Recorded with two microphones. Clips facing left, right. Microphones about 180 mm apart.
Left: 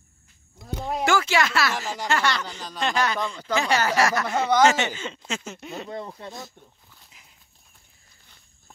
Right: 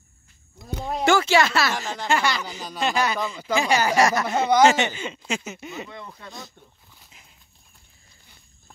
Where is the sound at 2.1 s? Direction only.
10° right (ahead or behind).